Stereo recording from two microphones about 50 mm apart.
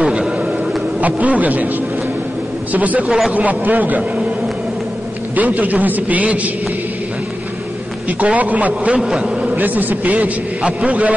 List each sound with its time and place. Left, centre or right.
0.0 s a sound: centre
1.0 s a man's voice: right
2.7 s a man's voice: right
3.1 s speech: centre
3.3 s a man's voice: right
5.3 s a man's voice: right
8.2 s a man's voice: right
9.6 s a man's voice: right